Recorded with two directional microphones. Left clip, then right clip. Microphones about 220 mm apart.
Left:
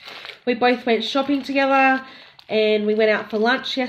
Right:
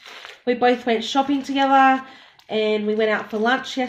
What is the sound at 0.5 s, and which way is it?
Speech, centre (ahead or behind).